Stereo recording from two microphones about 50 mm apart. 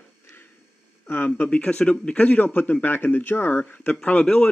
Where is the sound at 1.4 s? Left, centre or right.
Left.